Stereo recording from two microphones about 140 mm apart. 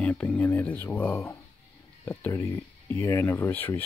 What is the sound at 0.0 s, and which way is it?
Speech, 10° left (ahead or behind).